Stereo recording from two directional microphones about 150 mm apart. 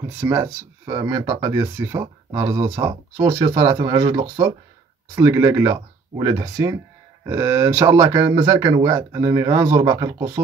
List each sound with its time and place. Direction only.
0.2 s speech: 15° right (ahead or behind)